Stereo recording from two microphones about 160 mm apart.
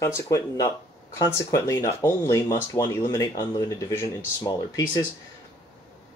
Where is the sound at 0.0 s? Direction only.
20° left (ahead or behind).